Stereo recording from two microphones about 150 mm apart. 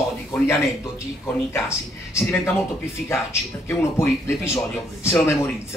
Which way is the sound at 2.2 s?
20° left (ahead or behind).